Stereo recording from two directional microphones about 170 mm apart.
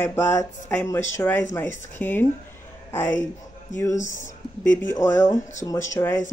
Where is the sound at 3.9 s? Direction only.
45° left (ahead or behind).